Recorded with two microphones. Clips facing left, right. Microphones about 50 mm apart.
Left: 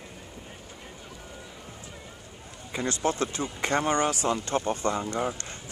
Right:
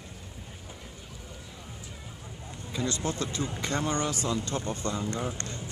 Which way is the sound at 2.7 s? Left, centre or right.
Left.